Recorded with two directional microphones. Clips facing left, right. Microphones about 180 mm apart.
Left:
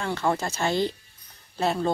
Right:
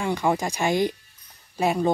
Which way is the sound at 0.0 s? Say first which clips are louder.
Right 2 dB; 15° right (ahead or behind).